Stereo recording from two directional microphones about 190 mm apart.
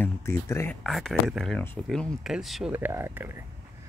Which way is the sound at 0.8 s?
Centre (ahead or behind).